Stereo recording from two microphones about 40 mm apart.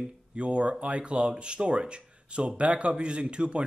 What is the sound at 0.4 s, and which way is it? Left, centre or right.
Speech, right.